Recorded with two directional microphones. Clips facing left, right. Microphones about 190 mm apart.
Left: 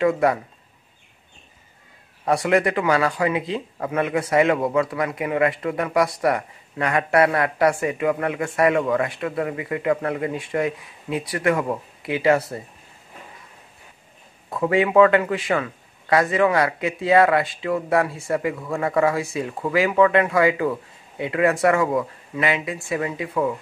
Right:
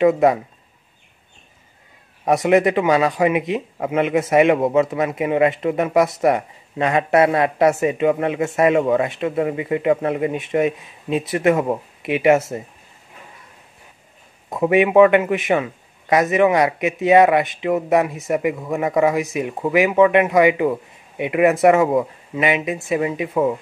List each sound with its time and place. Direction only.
0.0 s a man's voice: 20° right (ahead or behind)
2.2 s a man's voice: 20° right (ahead or behind)
14.5 s a man's voice: 20° right (ahead or behind)